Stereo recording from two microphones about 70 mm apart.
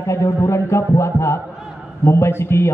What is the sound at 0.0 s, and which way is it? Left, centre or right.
A man's voice, left.